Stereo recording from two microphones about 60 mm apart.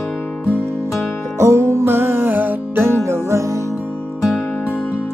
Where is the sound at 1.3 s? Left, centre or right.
Right.